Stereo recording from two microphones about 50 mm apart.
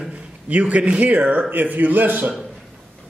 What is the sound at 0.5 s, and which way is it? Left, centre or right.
A man's voice, right.